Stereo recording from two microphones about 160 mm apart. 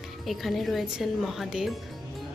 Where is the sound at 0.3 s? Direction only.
Centre (ahead or behind).